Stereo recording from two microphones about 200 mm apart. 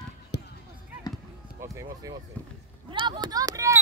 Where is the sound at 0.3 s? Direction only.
60° left (ahead or behind).